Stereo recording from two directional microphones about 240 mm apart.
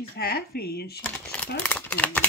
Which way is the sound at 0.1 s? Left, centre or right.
Left.